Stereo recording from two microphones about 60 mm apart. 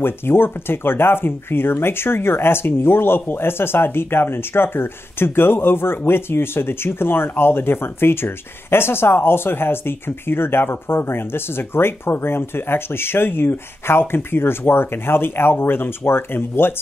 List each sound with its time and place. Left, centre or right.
0.0 s speech: left